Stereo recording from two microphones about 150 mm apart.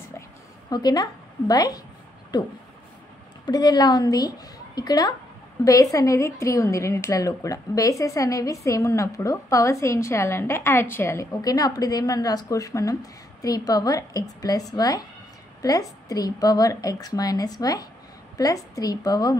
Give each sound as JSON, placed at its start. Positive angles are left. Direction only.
{"t": 0.7, "sound": "a woman's voice", "side_deg": 25}